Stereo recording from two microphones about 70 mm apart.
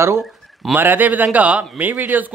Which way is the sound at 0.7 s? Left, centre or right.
Right.